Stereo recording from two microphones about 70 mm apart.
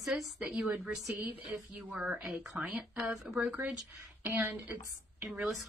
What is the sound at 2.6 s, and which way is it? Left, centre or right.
Speech, right.